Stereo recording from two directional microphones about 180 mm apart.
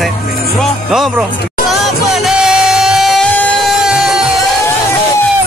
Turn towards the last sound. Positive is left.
turn(degrees=0)  # may be behind; listen again after turning